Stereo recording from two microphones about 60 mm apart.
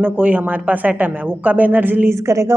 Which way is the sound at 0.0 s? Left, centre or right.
Right.